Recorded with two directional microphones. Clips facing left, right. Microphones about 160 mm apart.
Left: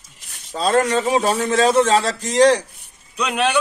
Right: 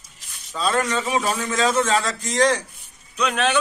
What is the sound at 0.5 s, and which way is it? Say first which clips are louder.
A man's voice: left 5 dB; 35° left (ahead or behind).